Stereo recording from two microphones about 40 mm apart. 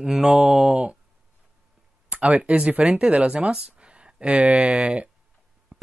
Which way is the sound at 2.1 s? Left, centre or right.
Right.